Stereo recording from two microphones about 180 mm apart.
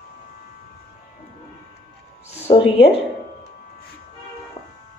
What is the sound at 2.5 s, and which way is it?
Speech, 35° left (ahead or behind).